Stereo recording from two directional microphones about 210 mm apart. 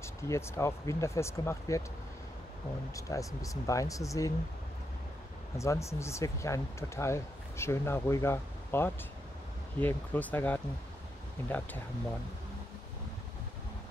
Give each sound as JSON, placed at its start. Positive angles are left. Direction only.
{"t": 0.0, "sound": "speech", "side_deg": 10}
{"t": 2.9, "sound": "speech", "side_deg": 15}
{"t": 5.6, "sound": "speech", "side_deg": 15}